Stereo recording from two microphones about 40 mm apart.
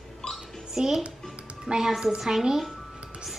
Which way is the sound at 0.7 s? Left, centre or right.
Centre.